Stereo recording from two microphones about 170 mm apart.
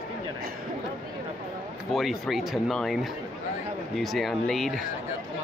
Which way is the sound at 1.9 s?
Centre (ahead or behind).